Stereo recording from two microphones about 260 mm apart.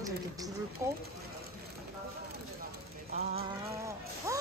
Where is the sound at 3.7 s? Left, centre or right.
Centre.